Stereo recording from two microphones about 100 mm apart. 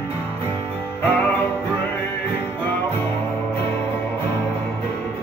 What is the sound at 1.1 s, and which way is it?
Music, 20° left (ahead or behind).